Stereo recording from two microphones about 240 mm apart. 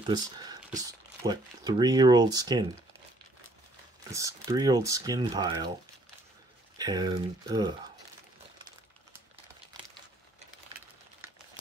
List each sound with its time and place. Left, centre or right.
0.0 s speech: centre
4.1 s speech: centre
6.8 s speech: centre